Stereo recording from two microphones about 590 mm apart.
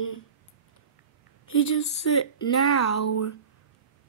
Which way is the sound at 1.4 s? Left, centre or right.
Left.